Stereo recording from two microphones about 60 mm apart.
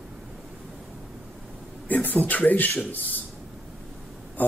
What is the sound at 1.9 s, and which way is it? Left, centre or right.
Speech, left.